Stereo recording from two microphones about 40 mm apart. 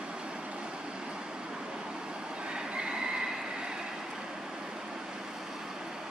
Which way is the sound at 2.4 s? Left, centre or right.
Right.